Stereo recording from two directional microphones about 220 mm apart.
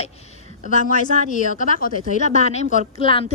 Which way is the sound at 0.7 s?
35° left (ahead or behind).